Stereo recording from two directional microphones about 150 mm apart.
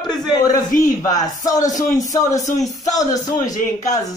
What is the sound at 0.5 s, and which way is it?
Speech, 25° left (ahead or behind).